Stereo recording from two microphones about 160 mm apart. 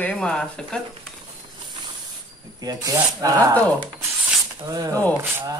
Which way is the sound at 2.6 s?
20° right (ahead or behind).